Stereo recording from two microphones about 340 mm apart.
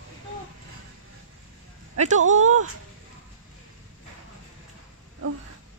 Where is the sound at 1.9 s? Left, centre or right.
Right.